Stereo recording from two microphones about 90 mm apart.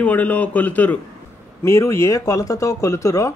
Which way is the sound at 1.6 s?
35° left (ahead or behind).